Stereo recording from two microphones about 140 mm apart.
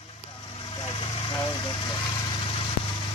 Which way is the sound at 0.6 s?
40° left (ahead or behind).